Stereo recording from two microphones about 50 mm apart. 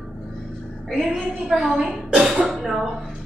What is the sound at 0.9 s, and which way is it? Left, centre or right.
A woman's voice, centre.